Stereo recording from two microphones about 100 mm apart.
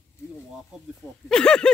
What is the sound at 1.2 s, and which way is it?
Speech, 10° left (ahead or behind).